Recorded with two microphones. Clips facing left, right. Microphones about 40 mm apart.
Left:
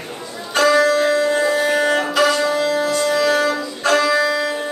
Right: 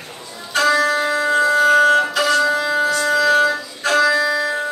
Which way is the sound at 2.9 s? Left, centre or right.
Centre.